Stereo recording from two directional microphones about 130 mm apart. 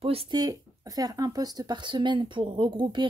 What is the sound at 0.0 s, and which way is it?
Speech, 45° right (ahead or behind).